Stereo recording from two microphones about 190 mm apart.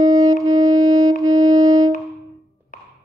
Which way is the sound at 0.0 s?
20° right (ahead or behind).